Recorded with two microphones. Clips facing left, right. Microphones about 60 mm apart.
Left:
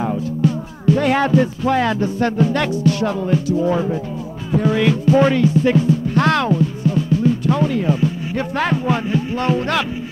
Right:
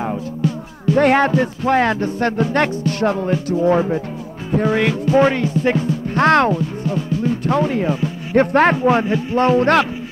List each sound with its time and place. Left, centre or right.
0.9 s speech: right
4.5 s music: right
5.3 s speech: right